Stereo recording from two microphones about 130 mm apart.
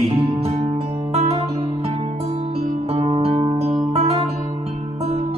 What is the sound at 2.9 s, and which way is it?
Music, 50° right (ahead or behind).